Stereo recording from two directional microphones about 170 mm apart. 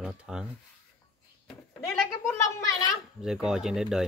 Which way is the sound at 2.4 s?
20° left (ahead or behind).